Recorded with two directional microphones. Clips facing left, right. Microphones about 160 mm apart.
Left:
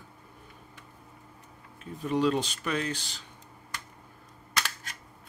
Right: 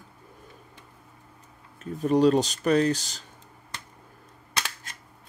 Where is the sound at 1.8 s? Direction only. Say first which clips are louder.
Right 6 dB; 40° right (ahead or behind).